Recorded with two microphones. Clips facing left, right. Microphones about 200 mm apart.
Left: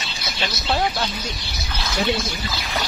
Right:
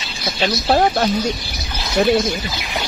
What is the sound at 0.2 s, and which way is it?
Speech, 50° right (ahead or behind).